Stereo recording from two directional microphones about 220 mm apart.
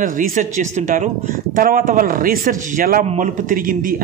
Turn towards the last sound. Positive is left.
turn(degrees=-40)  # may be behind; listen again after turning